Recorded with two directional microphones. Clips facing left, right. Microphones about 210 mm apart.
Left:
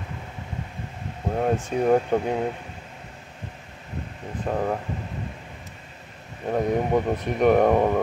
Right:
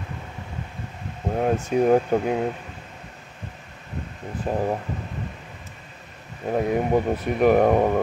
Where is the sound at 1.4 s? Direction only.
5° right (ahead or behind).